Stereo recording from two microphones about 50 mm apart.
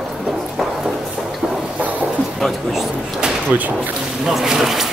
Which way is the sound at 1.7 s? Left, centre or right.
Right.